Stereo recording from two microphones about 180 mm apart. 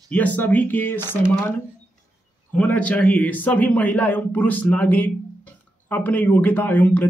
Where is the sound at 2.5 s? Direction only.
10° left (ahead or behind).